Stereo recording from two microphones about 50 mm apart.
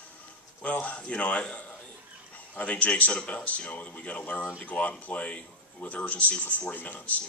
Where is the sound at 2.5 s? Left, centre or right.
Left.